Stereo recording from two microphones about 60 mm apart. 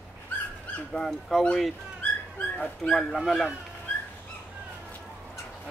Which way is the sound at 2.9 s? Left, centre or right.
Centre.